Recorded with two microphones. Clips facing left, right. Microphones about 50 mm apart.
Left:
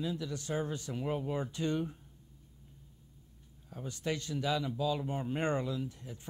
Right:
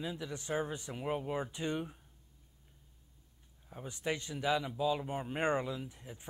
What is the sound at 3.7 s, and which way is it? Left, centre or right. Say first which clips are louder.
Speech: left 1 dB; centre.